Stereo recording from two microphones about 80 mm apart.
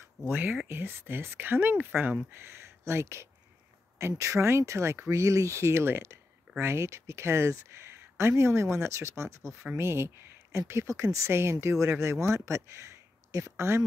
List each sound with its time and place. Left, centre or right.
0.3 s speech: right